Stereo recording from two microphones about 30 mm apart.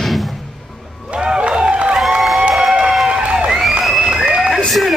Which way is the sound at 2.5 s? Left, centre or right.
Right.